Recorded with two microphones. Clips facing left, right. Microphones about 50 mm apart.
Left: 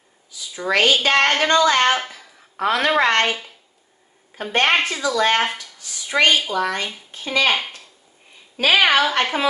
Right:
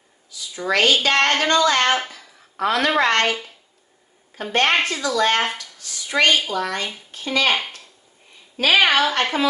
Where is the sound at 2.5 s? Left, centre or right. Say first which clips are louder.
Left 1 dB; centre.